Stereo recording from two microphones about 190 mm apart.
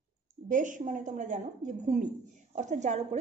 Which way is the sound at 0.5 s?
45° right (ahead or behind).